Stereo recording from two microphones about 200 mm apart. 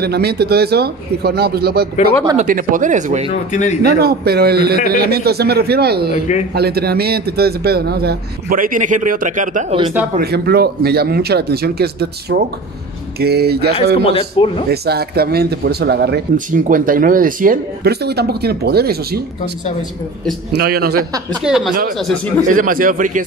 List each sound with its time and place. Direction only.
0.0 s a man's voice: 50° right (ahead or behind); by 3.3 s 35° right (ahead or behind)
3.3 s speech: 35° left (ahead or behind)
3.8 s a man's voice: 50° right (ahead or behind)
6.1 s speech: 35° left (ahead or behind)
6.5 s a man's voice: 50° right (ahead or behind)
10.1 s a man's voice: 50° right (ahead or behind)
13.9 s a man's voice: 30° left (ahead or behind)
14.7 s a man's voice: 50° right (ahead or behind)
16.3 s a man's voice: 40° right (ahead or behind)
20.5 s a man's voice: 50° right (ahead or behind)
21.4 s speech: 5° right (ahead or behind)
22.5 s a man's voice: 45° right (ahead or behind)